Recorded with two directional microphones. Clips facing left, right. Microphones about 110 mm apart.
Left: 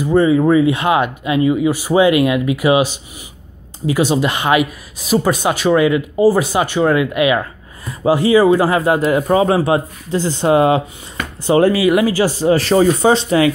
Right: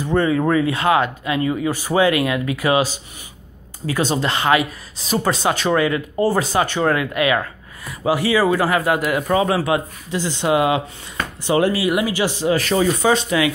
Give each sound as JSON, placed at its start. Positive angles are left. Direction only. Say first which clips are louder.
{"t": 0.0, "sound": "a man's voice", "louder": "left 5 dB", "side_deg": 15}